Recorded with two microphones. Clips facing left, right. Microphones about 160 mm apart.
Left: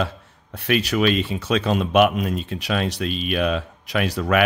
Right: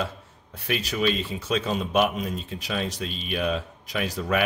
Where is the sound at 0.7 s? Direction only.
75° left (ahead or behind).